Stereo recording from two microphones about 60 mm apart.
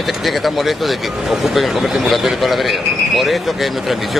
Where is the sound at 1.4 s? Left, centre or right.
Centre.